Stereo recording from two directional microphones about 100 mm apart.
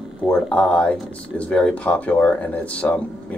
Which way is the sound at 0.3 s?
10° left (ahead or behind).